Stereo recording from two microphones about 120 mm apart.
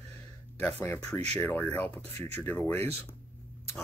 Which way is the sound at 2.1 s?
60° right (ahead or behind).